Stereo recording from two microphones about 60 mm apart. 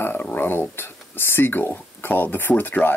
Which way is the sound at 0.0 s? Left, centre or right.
Left.